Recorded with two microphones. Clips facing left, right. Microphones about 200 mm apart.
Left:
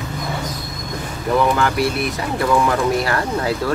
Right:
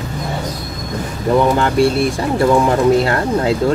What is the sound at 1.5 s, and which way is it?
Speech, 25° right (ahead or behind).